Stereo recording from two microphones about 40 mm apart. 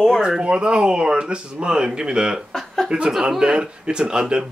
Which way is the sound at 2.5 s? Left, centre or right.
Centre.